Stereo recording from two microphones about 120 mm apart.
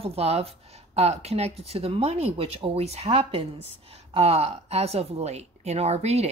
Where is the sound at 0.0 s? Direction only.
60° right (ahead or behind).